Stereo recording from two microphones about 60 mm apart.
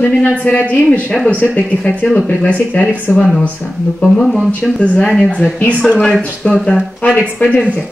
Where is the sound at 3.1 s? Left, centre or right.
Left.